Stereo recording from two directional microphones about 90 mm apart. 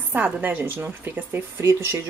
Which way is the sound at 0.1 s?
20° right (ahead or behind).